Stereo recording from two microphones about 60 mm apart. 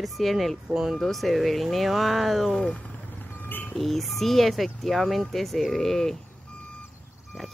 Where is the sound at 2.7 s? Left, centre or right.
Left.